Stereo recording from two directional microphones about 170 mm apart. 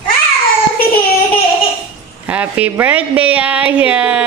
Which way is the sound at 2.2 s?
10° right (ahead or behind).